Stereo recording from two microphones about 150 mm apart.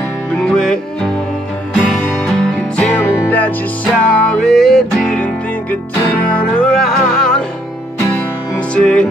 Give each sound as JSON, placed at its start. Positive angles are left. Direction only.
{"t": 0.3, "sound": "music", "side_deg": 5}